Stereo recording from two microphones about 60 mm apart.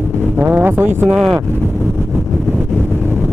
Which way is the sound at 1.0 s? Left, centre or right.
Centre.